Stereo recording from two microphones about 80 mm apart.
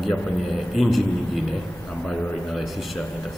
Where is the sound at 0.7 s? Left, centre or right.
Centre.